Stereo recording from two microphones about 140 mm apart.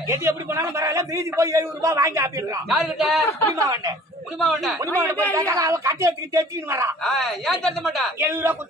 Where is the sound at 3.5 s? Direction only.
25° right (ahead or behind).